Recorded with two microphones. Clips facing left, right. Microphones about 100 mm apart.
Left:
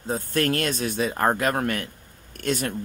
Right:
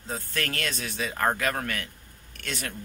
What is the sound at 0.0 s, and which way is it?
Speech, 50° left (ahead or behind).